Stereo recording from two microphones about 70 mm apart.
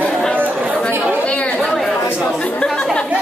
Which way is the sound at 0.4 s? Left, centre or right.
Right.